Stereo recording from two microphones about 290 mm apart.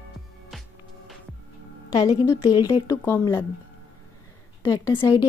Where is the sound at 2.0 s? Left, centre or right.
Centre.